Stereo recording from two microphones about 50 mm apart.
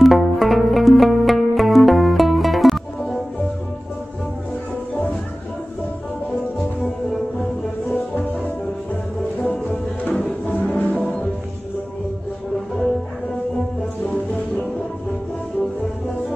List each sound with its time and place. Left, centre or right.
0.0 s music: centre
7.9 s music: left
14.0 s music: left